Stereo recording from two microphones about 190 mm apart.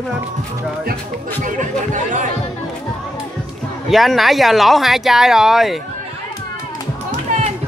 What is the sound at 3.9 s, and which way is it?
Speech, centre (ahead or behind).